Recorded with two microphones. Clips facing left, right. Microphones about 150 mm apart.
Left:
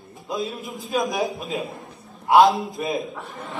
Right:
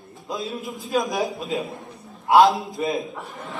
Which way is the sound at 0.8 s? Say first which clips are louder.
Even; centre (ahead or behind).